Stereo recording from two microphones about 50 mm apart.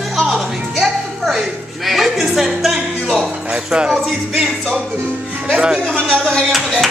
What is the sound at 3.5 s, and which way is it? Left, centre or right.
Speech, centre.